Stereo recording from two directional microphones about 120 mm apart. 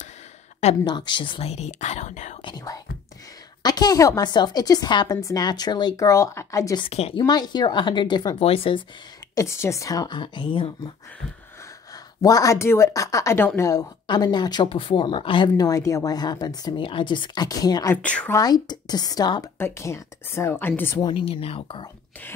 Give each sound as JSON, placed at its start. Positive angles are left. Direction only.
{"t": 0.8, "sound": "speech", "side_deg": 40}
{"t": 1.4, "sound": "speech", "side_deg": 65}
{"t": 2.4, "sound": "whispering", "side_deg": 30}
{"t": 3.6, "sound": "speech", "side_deg": 35}
{"t": 6.8, "sound": "speech", "side_deg": 55}
{"t": 7.2, "sound": "speech", "side_deg": 35}
{"t": 8.4, "sound": "speech", "side_deg": 50}
{"t": 9.3, "sound": "speech", "side_deg": 25}
{"t": 12.2, "sound": "a woman's voice", "side_deg": 30}
{"t": 14.0, "sound": "speech", "side_deg": 40}
{"t": 17.9, "sound": "speech", "side_deg": 10}
{"t": 18.3, "sound": "speech", "side_deg": 30}
{"t": 19.6, "sound": "a woman's voice", "side_deg": 25}
{"t": 21.0, "sound": "speech", "side_deg": 50}